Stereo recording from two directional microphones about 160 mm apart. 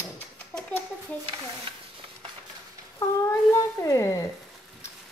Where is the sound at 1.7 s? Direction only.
30° right (ahead or behind).